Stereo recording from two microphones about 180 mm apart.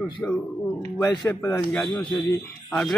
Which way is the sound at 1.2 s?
10° left (ahead or behind).